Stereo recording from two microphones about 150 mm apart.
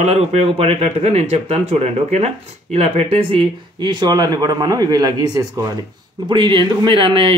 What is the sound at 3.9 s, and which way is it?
Speech, 25° right (ahead or behind).